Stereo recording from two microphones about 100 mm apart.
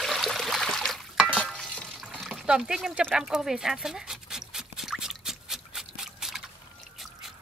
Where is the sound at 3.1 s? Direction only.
5° right (ahead or behind).